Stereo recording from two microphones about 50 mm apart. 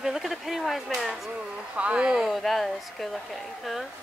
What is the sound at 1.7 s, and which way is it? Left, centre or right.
Speech, right.